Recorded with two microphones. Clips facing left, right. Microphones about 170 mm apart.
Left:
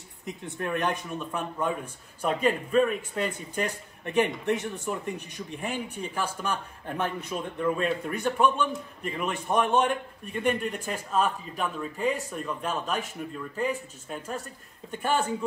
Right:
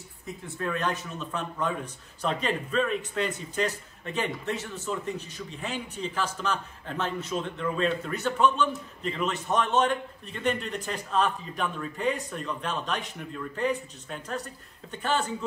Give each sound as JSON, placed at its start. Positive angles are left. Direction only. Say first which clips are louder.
{"t": 0.2, "sound": "a man's voice", "louder": "even", "side_deg": 20}